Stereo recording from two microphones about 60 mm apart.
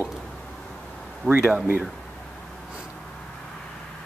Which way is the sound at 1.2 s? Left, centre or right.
Centre.